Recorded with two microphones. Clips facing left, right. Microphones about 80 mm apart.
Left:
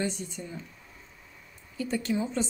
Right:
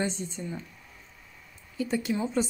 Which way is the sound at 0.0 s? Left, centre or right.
Right.